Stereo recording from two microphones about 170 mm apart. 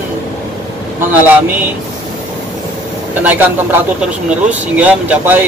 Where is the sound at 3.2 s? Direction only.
10° right (ahead or behind).